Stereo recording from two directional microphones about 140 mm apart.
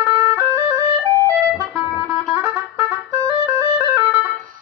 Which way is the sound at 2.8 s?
20° right (ahead or behind).